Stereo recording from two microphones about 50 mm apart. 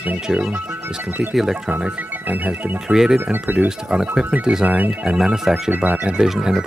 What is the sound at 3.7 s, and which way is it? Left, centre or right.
Speech, centre.